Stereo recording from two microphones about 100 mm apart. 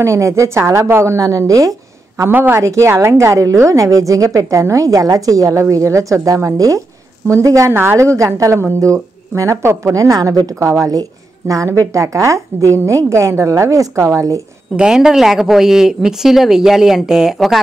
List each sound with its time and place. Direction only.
0.0 s a woman's voice: 30° right (ahead or behind)
2.3 s speech: 20° right (ahead or behind)
2.6 s a woman's voice: 30° right (ahead or behind)
14.8 s a woman's voice: 5° right (ahead or behind)